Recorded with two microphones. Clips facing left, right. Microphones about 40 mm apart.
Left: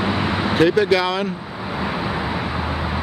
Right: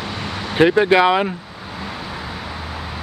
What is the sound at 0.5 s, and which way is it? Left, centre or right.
Speech, right.